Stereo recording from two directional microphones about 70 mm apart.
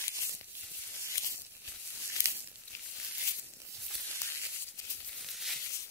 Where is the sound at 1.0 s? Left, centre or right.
Left.